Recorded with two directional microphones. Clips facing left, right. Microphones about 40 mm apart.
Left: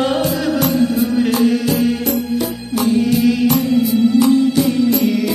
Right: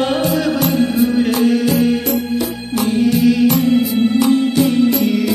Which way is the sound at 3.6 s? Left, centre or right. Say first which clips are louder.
Even; right.